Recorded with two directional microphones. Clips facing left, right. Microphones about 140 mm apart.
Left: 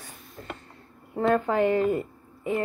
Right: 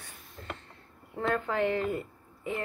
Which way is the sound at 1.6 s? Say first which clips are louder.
Left 6 dB; 15° left (ahead or behind).